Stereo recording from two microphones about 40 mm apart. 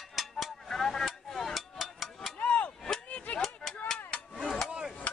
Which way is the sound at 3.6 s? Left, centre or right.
Left.